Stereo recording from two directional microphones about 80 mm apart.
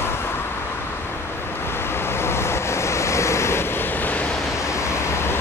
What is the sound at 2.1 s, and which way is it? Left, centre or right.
Waves, left.